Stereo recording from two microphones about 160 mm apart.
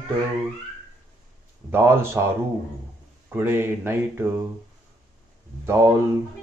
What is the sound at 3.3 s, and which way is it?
Speech, 15° right (ahead or behind).